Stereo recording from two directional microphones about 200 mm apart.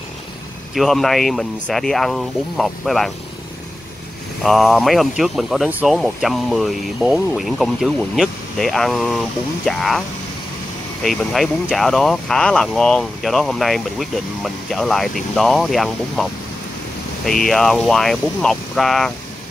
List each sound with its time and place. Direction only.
0.7 s speech: centre (ahead or behind)
4.4 s speech: centre (ahead or behind)
17.3 s speech: centre (ahead or behind)